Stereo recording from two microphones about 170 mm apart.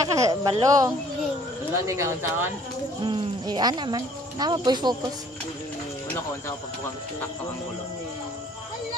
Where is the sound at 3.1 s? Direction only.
25° right (ahead or behind).